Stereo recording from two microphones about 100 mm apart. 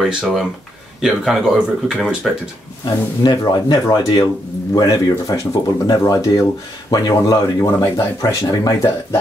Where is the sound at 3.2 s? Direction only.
45° left (ahead or behind).